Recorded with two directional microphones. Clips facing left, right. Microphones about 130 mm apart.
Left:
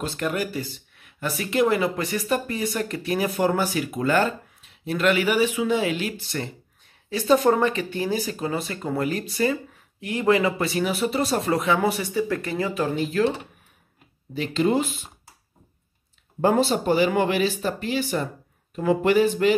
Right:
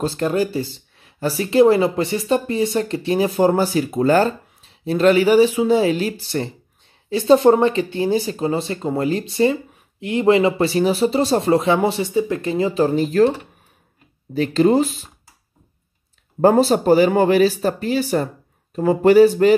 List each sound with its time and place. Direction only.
0.0 s speech: 30° right (ahead or behind)
14.3 s speech: 40° right (ahead or behind)
16.3 s speech: 40° right (ahead or behind)